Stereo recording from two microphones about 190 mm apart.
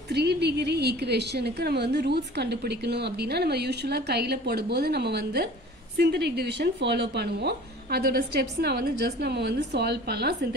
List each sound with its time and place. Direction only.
0.1 s a woman's voice: 60° right (ahead or behind)